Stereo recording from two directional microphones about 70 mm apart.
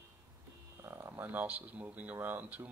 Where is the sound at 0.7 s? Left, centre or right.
Right.